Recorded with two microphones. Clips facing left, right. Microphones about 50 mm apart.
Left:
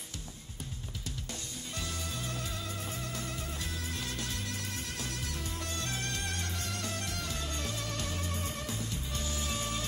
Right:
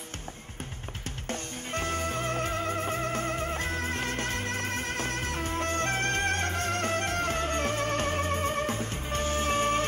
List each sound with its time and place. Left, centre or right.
1.3 s music: right